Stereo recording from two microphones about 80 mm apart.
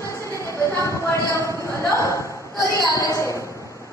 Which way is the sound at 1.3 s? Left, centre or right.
Left.